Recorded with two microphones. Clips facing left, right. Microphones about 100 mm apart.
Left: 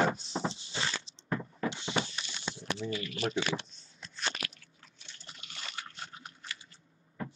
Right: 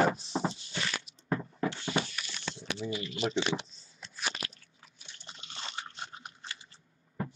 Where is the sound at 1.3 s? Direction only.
30° right (ahead or behind).